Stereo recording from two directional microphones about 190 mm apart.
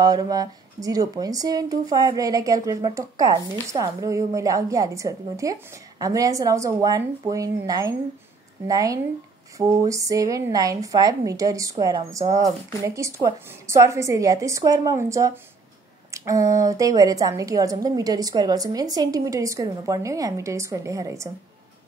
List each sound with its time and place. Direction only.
0.0 s a woman's voice: 20° right (ahead or behind)